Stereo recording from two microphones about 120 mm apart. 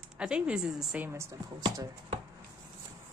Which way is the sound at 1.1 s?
25° right (ahead or behind).